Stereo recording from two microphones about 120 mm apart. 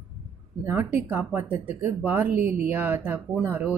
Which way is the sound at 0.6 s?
15° right (ahead or behind).